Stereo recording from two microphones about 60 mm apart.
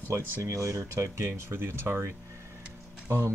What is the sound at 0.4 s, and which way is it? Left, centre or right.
Speech, right.